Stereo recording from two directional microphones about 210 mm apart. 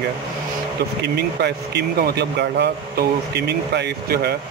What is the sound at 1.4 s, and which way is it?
Speech, 50° right (ahead or behind).